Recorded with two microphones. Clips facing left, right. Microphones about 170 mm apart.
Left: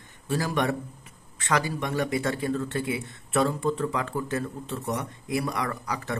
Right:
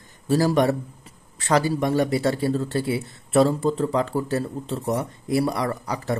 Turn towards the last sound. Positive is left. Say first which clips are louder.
# right 5 dB
turn(degrees=-30)  # may be behind; listen again after turning